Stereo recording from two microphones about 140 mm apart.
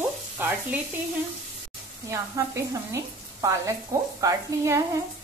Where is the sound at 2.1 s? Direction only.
25° right (ahead or behind).